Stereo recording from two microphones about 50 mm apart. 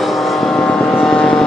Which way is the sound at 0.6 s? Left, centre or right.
Centre.